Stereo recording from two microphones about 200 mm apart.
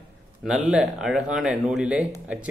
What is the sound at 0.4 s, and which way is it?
A man's voice, 5° right (ahead or behind).